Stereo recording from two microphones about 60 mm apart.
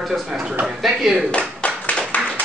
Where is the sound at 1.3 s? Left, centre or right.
Left.